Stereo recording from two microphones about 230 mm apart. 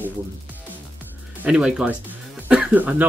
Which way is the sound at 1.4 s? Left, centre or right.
Centre.